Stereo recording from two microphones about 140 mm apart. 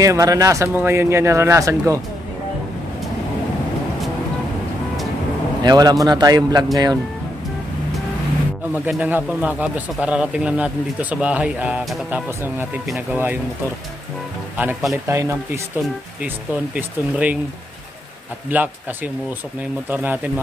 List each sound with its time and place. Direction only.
0.0 s speech: 25° right (ahead or behind)
5.6 s speech: 30° right (ahead or behind)
8.8 s speech: 10° right (ahead or behind)
15.0 s speech: 20° right (ahead or behind)
16.7 s speech: 10° right (ahead or behind)
18.5 s speech: 15° right (ahead or behind)
19.9 s speech: 15° right (ahead or behind)